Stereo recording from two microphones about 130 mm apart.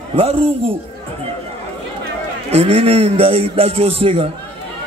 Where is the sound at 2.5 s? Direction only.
50° right (ahead or behind).